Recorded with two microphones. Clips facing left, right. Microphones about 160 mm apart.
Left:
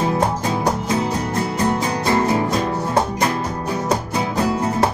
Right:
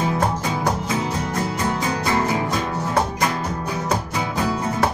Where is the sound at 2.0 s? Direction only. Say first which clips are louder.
Left 4 dB; 35° left (ahead or behind).